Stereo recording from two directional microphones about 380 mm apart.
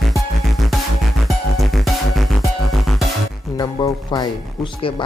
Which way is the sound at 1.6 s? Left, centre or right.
Centre.